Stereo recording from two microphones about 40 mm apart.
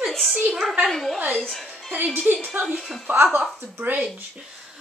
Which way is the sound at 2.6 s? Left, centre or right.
Right.